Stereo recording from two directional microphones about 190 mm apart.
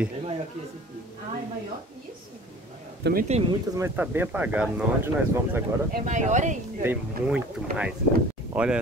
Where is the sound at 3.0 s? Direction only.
60° right (ahead or behind).